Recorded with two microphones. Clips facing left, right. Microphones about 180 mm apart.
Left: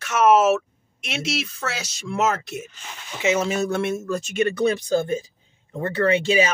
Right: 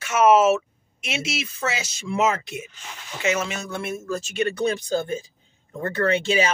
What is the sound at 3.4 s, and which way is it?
Speech, 35° left (ahead or behind).